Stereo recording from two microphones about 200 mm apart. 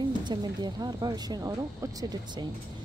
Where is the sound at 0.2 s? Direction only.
20° right (ahead or behind).